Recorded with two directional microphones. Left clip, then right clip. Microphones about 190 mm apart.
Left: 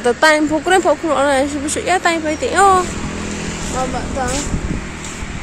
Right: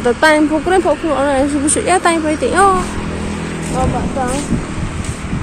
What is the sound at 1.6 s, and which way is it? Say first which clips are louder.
Speech: right 3 dB; 5° right (ahead or behind).